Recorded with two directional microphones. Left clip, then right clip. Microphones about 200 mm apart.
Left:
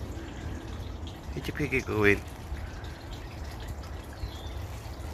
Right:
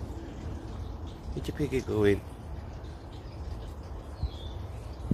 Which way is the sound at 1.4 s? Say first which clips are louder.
Left 2 dB; 20° right (ahead or behind).